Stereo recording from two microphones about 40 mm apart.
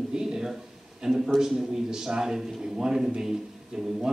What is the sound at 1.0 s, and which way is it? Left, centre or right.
A man's voice, centre.